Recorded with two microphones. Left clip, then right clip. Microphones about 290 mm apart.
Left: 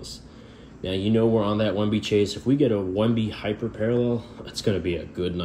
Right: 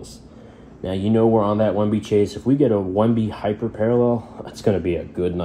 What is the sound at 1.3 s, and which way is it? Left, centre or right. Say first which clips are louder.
Speech: right 5 dB; right.